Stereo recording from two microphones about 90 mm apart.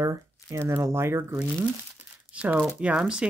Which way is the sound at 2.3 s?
15° right (ahead or behind).